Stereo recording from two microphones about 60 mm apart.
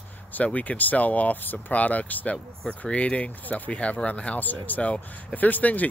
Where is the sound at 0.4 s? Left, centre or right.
Left.